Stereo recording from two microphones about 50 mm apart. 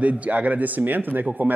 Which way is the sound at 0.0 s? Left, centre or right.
Right.